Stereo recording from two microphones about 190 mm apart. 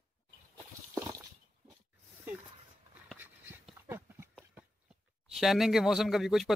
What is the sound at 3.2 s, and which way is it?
Dog, 10° right (ahead or behind).